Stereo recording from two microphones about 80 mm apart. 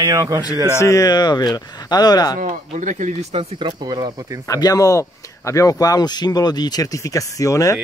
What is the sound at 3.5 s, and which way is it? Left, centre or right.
Speech, right.